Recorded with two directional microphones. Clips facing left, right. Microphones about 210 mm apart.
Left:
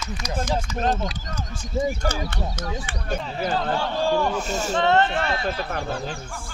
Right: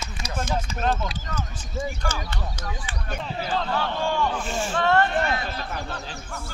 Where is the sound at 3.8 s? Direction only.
35° left (ahead or behind).